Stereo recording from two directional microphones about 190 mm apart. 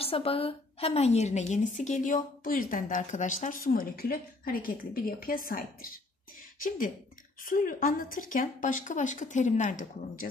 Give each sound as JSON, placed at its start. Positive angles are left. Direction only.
{"t": 0.0, "sound": "a woman's voice", "side_deg": 30}
{"t": 7.4, "sound": "a woman's voice", "side_deg": 45}